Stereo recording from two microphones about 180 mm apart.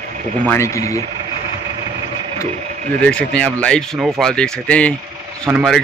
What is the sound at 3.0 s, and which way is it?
Speech, 5° left (ahead or behind).